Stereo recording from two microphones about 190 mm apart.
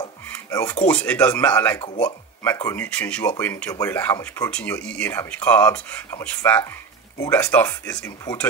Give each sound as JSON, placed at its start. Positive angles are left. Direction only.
{"t": 0.0, "sound": "dishes", "side_deg": 20}
{"t": 0.8, "sound": "speech", "side_deg": 5}